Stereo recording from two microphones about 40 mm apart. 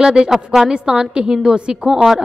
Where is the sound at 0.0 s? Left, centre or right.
Centre.